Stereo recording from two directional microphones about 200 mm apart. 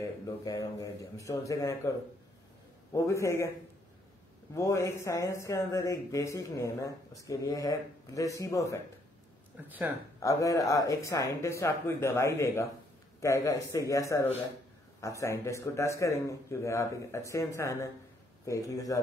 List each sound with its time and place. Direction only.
0.0 s speech: 15° left (ahead or behind)
4.6 s speech: 15° left (ahead or behind)
9.7 s speech: 10° right (ahead or behind)
10.2 s speech: 15° left (ahead or behind)